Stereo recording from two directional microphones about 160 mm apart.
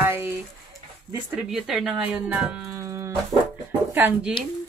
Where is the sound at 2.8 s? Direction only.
20° right (ahead or behind).